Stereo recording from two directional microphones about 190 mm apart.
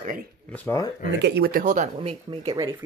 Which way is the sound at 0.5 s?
15° left (ahead or behind).